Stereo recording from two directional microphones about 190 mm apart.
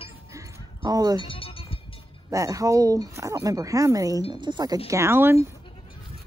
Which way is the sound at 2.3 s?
15° right (ahead or behind).